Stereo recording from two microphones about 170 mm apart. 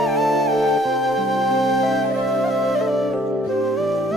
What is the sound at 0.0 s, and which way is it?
Music, centre (ahead or behind).